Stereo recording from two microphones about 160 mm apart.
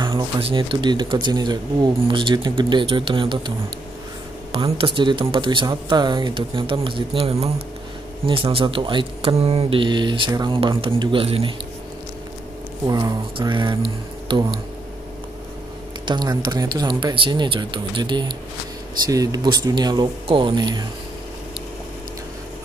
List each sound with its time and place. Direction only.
0.0 s speech: 35° right (ahead or behind)
12.8 s speech: 25° right (ahead or behind)
16.1 s speech: 25° right (ahead or behind)